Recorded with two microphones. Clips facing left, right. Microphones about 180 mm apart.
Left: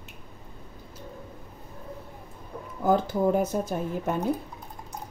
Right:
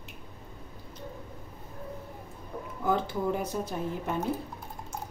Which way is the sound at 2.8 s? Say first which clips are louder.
Left 6 dB; 40° left (ahead or behind).